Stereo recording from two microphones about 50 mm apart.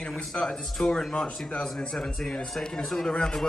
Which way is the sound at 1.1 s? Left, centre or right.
Centre.